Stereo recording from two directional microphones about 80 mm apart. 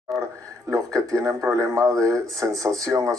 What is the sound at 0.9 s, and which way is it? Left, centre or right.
Speech, right.